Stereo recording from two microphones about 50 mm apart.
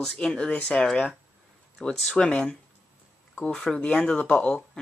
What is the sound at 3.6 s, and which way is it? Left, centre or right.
Speech, centre.